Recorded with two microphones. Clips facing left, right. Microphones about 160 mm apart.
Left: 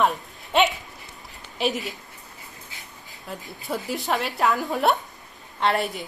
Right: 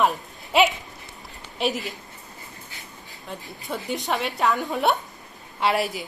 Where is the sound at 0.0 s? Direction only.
Centre (ahead or behind).